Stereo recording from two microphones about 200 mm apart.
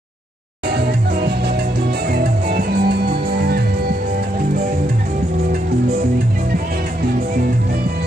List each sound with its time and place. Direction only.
0.7 s music: 55° right (ahead or behind)